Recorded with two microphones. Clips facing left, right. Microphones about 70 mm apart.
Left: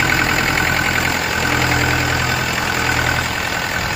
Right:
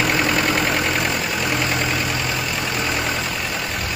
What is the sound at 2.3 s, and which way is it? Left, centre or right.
Vehicle, left.